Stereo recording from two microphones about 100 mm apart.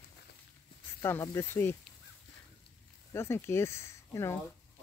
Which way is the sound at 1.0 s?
25° left (ahead or behind).